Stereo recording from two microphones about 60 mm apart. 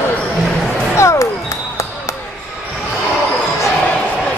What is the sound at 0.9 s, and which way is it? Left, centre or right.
Basketball bounce, left.